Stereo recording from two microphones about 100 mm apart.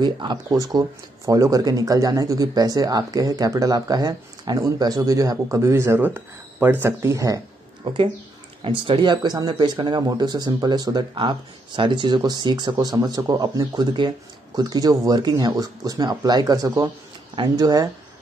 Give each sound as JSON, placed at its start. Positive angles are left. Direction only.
{"t": 0.0, "sound": "speech", "side_deg": -45}
{"t": 6.9, "sound": "speech", "side_deg": -30}
{"t": 7.8, "sound": "speech", "side_deg": -60}
{"t": 9.1, "sound": "speech", "side_deg": -45}
{"t": 10.0, "sound": "speech", "side_deg": -40}